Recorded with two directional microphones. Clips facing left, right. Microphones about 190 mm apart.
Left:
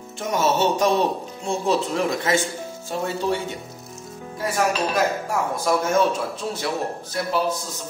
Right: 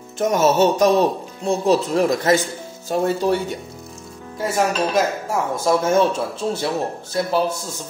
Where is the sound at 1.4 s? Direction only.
40° right (ahead or behind).